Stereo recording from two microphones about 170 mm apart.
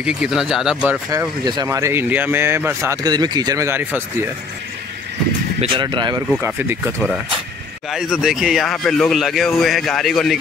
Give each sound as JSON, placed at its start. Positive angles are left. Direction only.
{"t": 0.0, "sound": "a man's voice", "side_deg": -5}
{"t": 1.4, "sound": "speech", "side_deg": -25}
{"t": 5.6, "sound": "speech", "side_deg": -25}
{"t": 6.4, "sound": "speech", "side_deg": -10}
{"t": 7.9, "sound": "a man's voice", "side_deg": 0}